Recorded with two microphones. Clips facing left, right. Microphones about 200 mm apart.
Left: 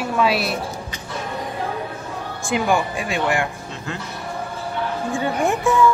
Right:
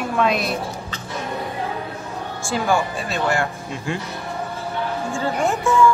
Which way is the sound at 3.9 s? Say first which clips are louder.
Right 4 dB; 10° right (ahead or behind).